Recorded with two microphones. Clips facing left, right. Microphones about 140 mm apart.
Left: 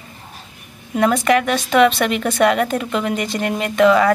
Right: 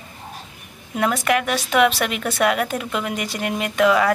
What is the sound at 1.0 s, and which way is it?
Speech, 5° right (ahead or behind).